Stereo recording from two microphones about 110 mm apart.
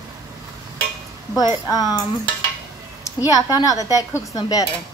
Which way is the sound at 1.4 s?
35° left (ahead or behind).